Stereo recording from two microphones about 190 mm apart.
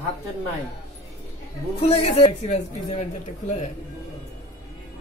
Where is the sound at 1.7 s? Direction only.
35° left (ahead or behind).